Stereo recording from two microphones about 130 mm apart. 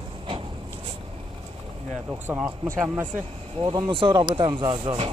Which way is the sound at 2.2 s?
15° right (ahead or behind).